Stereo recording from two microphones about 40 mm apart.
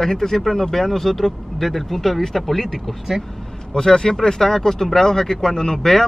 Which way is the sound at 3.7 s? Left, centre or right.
Centre.